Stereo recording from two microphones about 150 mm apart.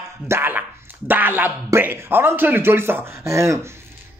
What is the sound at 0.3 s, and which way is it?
Speech, 15° right (ahead or behind).